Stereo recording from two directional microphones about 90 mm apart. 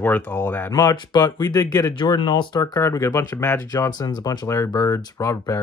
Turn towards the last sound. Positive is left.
turn(degrees=40)  # may be behind; listen again after turning